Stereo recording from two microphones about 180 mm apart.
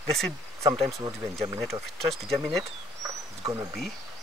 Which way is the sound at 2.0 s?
Centre (ahead or behind).